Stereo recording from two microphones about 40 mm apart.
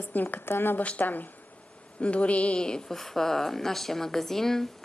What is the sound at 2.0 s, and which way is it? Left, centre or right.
Speech, left.